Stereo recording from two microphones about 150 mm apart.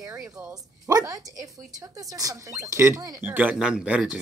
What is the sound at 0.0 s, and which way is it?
Speech, 20° right (ahead or behind).